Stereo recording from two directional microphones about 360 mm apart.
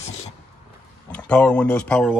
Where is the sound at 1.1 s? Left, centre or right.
Centre.